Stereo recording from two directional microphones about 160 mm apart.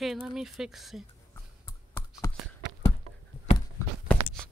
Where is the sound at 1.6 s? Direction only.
20° left (ahead or behind).